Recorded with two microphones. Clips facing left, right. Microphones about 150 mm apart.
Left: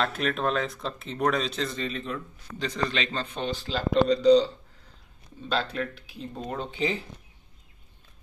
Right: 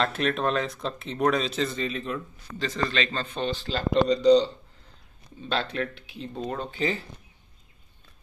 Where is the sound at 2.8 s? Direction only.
15° left (ahead or behind).